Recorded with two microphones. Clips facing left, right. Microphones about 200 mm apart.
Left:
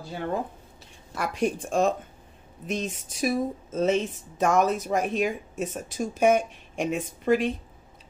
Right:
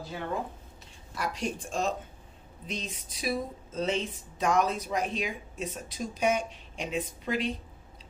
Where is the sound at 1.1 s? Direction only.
55° left (ahead or behind).